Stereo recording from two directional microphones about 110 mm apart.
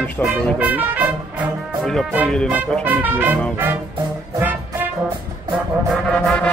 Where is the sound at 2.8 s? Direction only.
15° right (ahead or behind).